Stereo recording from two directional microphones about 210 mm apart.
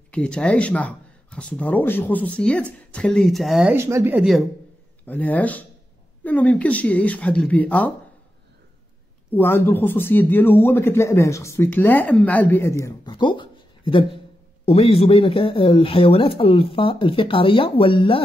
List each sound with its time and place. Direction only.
0.1 s speech: 5° left (ahead or behind)
3.7 s a man's voice: 10° right (ahead or behind); by 7.9 s 5° left (ahead or behind)
9.3 s a man's voice: 10° left (ahead or behind)
12.8 s speech: 20° left (ahead or behind)